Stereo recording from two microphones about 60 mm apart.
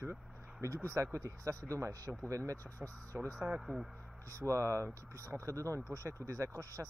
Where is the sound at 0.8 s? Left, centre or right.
Right.